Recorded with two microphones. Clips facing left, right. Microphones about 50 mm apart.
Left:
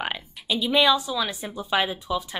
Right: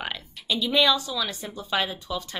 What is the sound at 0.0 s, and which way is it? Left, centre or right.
Speech, centre.